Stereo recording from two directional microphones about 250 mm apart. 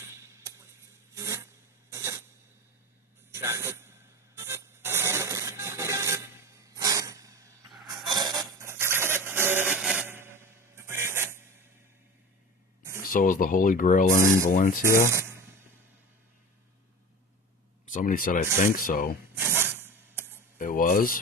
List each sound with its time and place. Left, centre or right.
0.1 s a sound: centre
1.1 s filing: centre
3.3 s speech: centre
4.4 s a sound: centre
13.0 s speech: left
14.2 s speech: centre
14.5 s speech: left
15.0 s a sound: centre
17.9 s speech: left
19.3 s rub: centre
20.5 s speech: left